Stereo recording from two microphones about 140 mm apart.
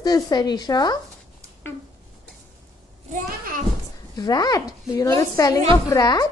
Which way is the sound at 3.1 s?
70° right (ahead or behind).